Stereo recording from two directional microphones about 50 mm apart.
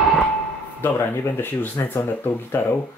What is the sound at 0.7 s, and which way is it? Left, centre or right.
Speech, left.